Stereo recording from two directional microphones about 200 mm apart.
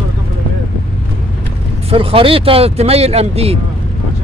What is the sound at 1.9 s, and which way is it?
Speech, 25° right (ahead or behind).